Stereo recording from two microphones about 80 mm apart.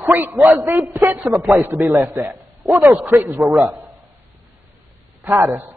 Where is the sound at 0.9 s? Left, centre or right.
Right.